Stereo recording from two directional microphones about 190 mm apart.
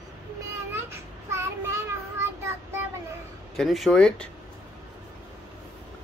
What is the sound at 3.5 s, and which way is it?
Speech, centre (ahead or behind).